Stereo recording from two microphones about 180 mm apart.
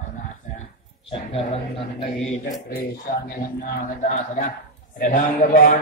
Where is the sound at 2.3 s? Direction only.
50° left (ahead or behind).